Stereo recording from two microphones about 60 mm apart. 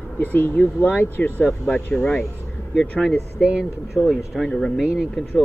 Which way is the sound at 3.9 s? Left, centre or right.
Centre.